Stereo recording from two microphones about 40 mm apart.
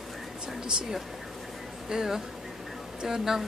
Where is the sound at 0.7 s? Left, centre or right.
Centre.